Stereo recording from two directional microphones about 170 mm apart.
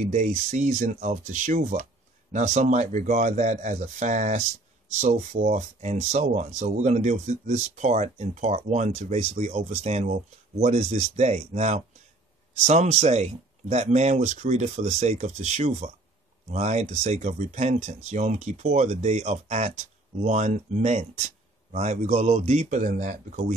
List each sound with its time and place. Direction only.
0.0 s speech: 45° right (ahead or behind)